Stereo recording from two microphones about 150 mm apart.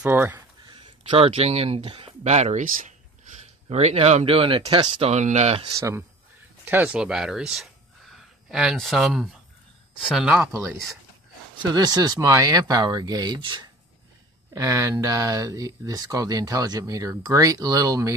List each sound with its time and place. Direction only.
0.0 s speech: 10° right (ahead or behind)
0.6 s speech: 35° right (ahead or behind); by 2.9 s 60° right (ahead or behind)
3.6 s speech: 45° right (ahead or behind)
5.8 s speech: 20° right (ahead or behind)
11.7 s speech: 25° right (ahead or behind)